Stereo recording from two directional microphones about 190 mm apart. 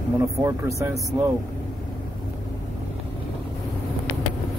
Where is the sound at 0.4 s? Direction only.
15° right (ahead or behind).